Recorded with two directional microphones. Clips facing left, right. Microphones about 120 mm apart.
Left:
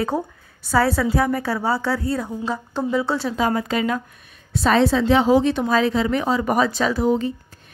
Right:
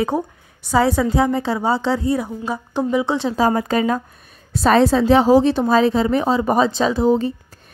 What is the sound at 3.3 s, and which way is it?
A woman's voice, 35° right (ahead or behind).